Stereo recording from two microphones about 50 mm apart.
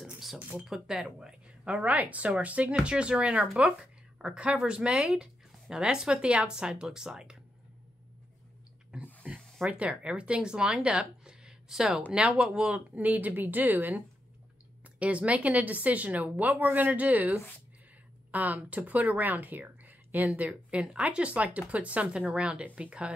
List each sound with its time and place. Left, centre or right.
0.0 s a sound: centre
0.4 s speech: right
0.7 s speech: centre
1.6 s speech: right
8.9 s a sound: centre
9.7 s speech: right
14.8 s speech: right
19.6 s a sound: right
20.3 s speech: right